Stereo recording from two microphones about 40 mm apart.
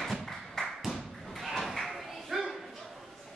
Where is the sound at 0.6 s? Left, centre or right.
Centre.